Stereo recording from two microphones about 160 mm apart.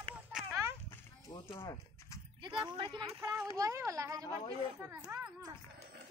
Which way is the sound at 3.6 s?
20° right (ahead or behind).